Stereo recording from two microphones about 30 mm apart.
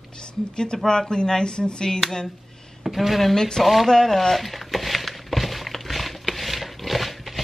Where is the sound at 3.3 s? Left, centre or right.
Centre.